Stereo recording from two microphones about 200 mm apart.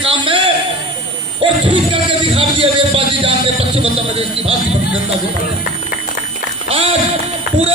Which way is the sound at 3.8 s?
30° right (ahead or behind).